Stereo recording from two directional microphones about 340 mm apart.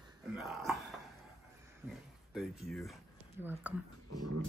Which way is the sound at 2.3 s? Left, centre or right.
Centre.